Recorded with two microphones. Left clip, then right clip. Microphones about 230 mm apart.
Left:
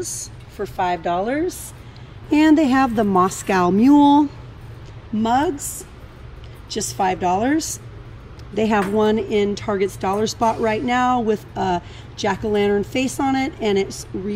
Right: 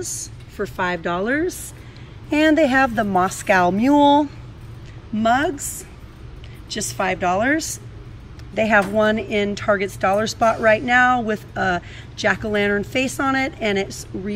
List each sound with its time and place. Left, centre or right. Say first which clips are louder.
0.0 s speech: left 1 dB; centre
2.3 s a woman's voice: even; centre
5.2 s speech: right 1 dB; centre